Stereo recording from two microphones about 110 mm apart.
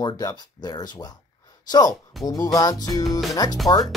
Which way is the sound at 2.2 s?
Centre (ahead or behind).